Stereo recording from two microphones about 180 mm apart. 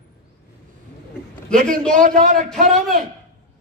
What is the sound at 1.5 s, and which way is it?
Speech, 5° left (ahead or behind).